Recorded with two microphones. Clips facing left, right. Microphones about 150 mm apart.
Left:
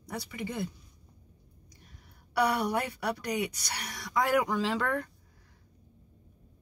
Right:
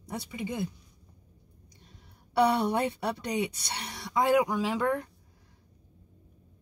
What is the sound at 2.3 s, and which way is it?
Speech, 25° right (ahead or behind).